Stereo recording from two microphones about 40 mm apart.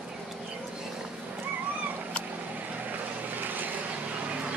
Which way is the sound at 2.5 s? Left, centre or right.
Right.